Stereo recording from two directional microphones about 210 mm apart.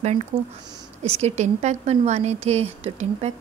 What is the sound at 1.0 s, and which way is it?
Speech, 30° right (ahead or behind).